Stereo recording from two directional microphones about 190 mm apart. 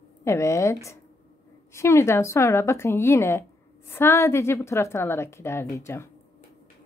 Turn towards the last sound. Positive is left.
turn(degrees=15)  # may be behind; listen again after turning